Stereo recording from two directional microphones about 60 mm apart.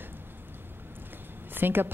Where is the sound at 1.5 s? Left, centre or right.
Right.